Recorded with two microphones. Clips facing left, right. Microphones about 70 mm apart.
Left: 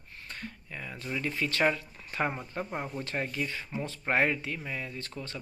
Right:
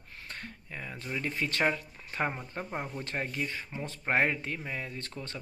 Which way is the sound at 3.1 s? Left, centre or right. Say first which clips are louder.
Left 1 dB; centre.